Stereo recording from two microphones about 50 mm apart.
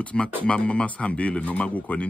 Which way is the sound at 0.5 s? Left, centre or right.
Left.